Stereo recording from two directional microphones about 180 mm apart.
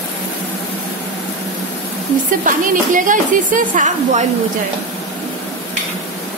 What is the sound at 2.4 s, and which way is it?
A woman's voice, 45° right (ahead or behind).